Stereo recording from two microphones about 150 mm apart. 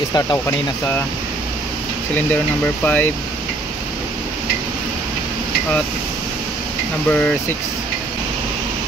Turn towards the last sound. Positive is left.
turn(degrees=10)  # may be behind; listen again after turning